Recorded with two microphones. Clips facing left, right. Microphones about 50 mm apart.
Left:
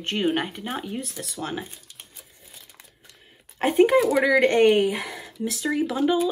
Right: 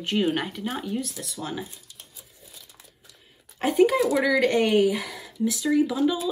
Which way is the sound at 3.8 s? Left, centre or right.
Left.